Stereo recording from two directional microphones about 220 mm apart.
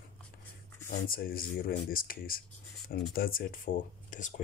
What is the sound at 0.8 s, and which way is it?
Speech, 40° left (ahead or behind).